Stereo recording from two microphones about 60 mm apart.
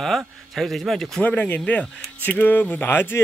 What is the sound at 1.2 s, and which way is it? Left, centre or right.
Speech, left.